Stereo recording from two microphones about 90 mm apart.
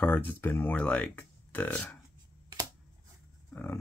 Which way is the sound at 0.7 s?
15° left (ahead or behind).